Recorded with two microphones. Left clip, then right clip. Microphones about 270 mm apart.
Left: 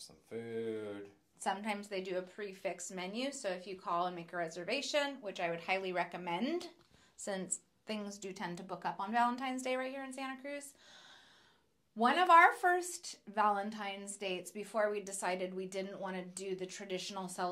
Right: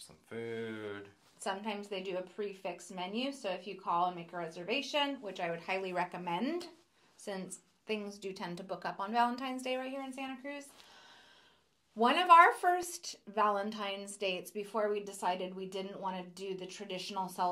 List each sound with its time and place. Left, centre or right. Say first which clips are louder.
1.4 s a woman's voice: left 1 dB; centre
12.0 s a woman's voice: right 3 dB; centre
12.4 s a woman's voice: right 2 dB; centre